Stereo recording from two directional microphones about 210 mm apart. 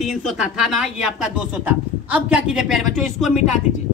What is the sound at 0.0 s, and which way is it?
Speech, centre (ahead or behind).